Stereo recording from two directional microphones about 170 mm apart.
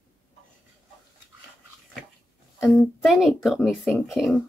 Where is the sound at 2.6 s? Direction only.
Centre (ahead or behind).